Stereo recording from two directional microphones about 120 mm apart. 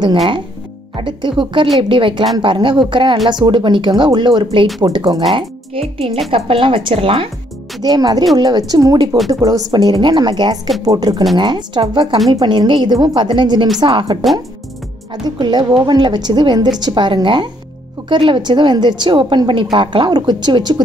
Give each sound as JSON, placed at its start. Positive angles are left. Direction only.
{"t": 0.9, "sound": "a woman's voice", "side_deg": -40}
{"t": 5.3, "sound": "a woman's voice", "side_deg": -50}
{"t": 7.8, "sound": "a woman's voice", "side_deg": -35}
{"t": 15.2, "sound": "a woman's voice", "side_deg": -35}